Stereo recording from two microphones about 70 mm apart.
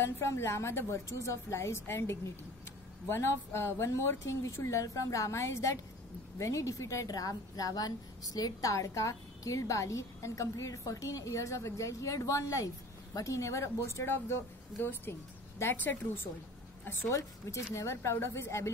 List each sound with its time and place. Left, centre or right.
0.0 s a woman's voice: left
7.1 s a woman's voice: left
17.1 s a woman's voice: left